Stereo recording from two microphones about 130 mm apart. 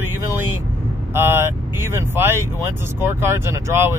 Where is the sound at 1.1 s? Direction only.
20° right (ahead or behind).